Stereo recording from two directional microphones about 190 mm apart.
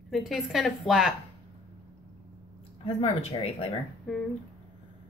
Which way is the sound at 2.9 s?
30° left (ahead or behind).